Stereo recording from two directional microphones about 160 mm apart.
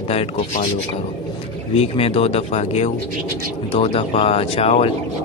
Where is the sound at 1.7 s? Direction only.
40° left (ahead or behind).